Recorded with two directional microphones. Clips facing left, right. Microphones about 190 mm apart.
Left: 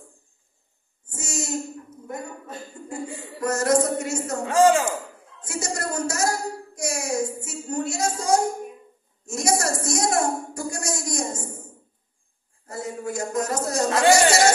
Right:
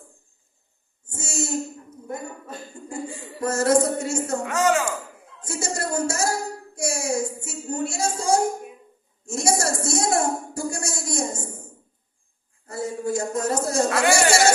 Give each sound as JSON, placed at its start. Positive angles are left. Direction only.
{"t": 1.1, "sound": "a sound", "side_deg": -30}
{"t": 2.9, "sound": "a woman's voice", "side_deg": -30}
{"t": 4.5, "sound": "speech", "side_deg": 30}
{"t": 5.4, "sound": "a sound", "side_deg": -30}
{"t": 9.2, "sound": "a woman's voice", "side_deg": -30}
{"t": 12.7, "sound": "speech", "side_deg": -30}
{"t": 13.8, "sound": "speech", "side_deg": 30}